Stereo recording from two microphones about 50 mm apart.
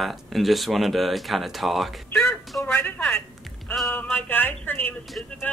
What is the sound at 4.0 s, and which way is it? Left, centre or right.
Speech, left.